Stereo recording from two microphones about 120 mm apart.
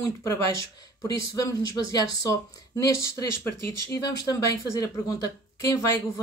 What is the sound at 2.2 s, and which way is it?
Speech, 30° left (ahead or behind).